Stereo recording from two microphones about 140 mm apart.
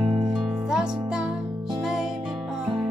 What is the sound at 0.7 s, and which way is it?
Music, 5° right (ahead or behind).